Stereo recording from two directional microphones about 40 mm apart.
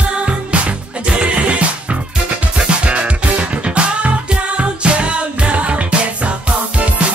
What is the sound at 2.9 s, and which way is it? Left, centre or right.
Music, right.